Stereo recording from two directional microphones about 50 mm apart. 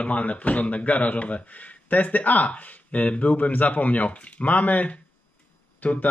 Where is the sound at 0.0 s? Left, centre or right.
Left.